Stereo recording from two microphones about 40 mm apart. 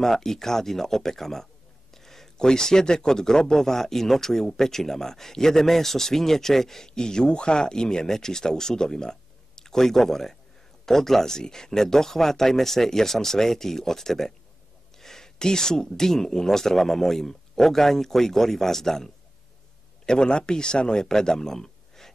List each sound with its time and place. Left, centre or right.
0.0 s a man's voice: centre
20.1 s speech: left